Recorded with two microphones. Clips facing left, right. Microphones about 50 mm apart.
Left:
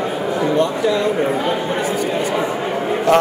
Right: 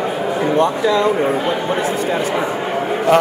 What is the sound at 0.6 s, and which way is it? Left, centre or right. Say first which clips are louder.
Speech: right 4 dB; right.